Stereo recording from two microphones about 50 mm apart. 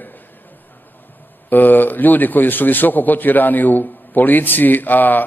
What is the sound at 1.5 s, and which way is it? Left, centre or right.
A man's voice, left.